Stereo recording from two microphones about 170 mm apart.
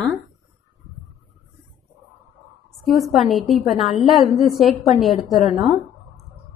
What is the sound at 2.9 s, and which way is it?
A woman's voice, centre (ahead or behind).